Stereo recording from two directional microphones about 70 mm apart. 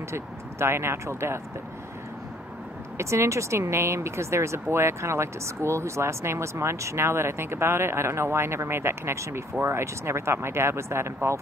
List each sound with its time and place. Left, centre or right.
0.1 s speech: right
3.0 s speech: right